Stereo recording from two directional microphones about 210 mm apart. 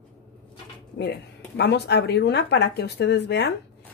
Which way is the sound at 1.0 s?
50° left (ahead or behind).